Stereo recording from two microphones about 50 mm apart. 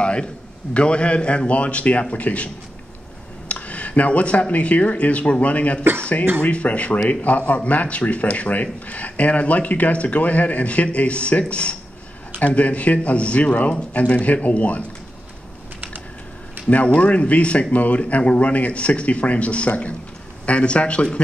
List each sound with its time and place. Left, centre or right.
0.0 s a sound: left
0.7 s speech: left
16.6 s speech: left